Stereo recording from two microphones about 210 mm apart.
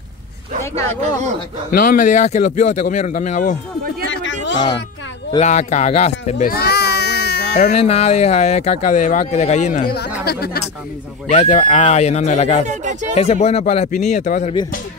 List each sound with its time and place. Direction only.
1.7 s speech: 40° left (ahead or behind)
4.1 s a sound: 60° left (ahead or behind)
5.4 s baby cry: 35° left (ahead or behind); by 7.5 s 50° left (ahead or behind)
7.7 s speech: 30° left (ahead or behind)
10.2 s speech: 50° left (ahead or behind)
11.3 s speech: 35° left (ahead or behind)
12.6 s speech: 35° right (ahead or behind)
13.1 s speech: 30° left (ahead or behind)